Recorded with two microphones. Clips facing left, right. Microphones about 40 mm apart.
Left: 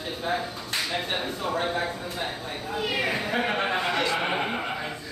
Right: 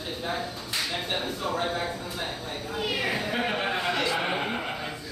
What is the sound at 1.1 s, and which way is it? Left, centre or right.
Speech, centre.